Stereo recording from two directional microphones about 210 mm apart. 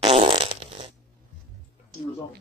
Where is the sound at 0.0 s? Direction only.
25° right (ahead or behind).